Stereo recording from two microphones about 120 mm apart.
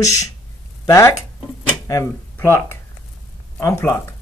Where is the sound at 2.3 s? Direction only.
20° left (ahead or behind).